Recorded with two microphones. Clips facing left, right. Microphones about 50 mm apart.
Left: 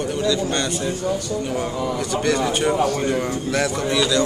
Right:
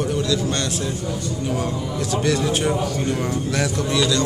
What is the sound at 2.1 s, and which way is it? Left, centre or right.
A man's voice, centre.